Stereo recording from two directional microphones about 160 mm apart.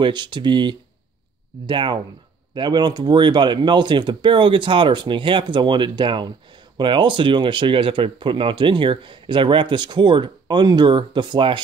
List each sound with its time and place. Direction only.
0.0 s speech: 30° right (ahead or behind)